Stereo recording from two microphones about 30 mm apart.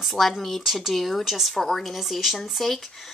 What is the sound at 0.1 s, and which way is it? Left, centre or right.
Speech, centre.